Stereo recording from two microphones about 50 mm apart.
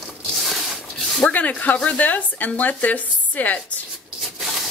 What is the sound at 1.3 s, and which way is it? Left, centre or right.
A woman's voice, left.